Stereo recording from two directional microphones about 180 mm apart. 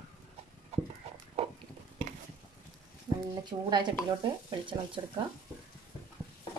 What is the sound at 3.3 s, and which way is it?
Speech, 25° right (ahead or behind).